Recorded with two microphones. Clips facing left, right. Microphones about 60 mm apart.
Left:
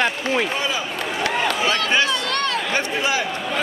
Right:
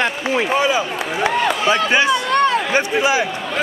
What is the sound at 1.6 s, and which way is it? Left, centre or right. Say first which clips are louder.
A man's voice: right 6 dB; centre.